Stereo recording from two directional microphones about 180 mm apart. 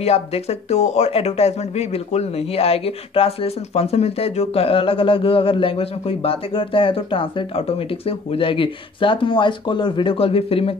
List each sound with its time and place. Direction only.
0.0 s speech: 35° left (ahead or behind)